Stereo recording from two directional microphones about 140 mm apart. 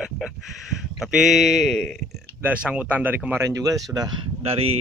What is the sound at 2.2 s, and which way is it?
Speech, 10° right (ahead or behind).